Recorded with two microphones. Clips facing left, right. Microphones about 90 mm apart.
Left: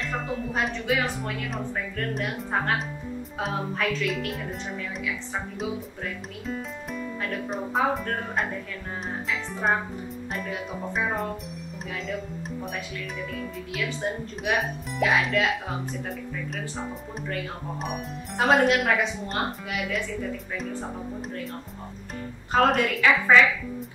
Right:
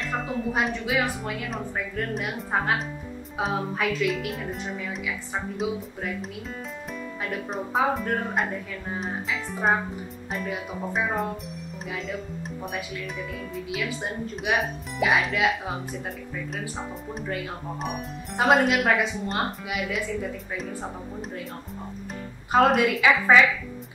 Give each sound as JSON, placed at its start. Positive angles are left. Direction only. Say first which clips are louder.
{"t": 0.0, "sound": "a woman's voice", "louder": "right 2 dB", "side_deg": 0}
{"t": 7.2, "sound": "speech", "louder": "right 1 dB", "side_deg": -5}
{"t": 17.8, "sound": "speech", "louder": "even", "side_deg": 0}
{"t": 22.5, "sound": "a woman's voice", "louder": "right 2 dB", "side_deg": -10}